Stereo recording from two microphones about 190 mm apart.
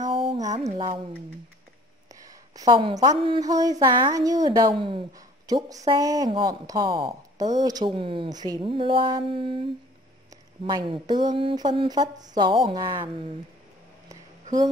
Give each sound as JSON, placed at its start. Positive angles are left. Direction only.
{"t": 0.0, "sound": "mantra", "side_deg": -25}
{"t": 2.0, "sound": "a woman's voice", "side_deg": -20}